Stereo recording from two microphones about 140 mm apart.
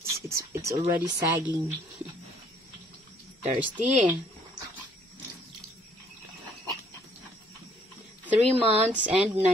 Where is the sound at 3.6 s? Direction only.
10° right (ahead or behind).